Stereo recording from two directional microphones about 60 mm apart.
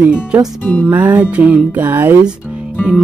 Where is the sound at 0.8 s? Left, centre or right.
Right.